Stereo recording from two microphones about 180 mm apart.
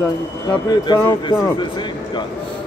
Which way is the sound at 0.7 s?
25° left (ahead or behind).